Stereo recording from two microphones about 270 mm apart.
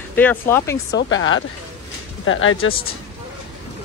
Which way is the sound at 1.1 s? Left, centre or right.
Left.